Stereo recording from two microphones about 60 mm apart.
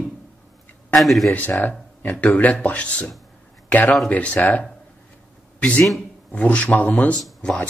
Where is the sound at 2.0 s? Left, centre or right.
Left.